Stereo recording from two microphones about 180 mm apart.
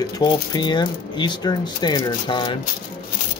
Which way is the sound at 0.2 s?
20° left (ahead or behind).